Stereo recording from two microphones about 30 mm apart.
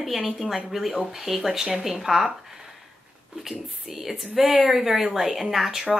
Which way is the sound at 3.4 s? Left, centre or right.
Centre.